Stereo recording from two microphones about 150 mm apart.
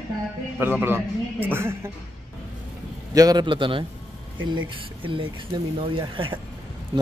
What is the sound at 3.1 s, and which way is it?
Speech, 25° right (ahead or behind).